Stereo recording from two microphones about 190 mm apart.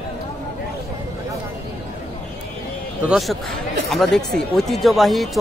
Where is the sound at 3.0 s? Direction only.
Centre (ahead or behind).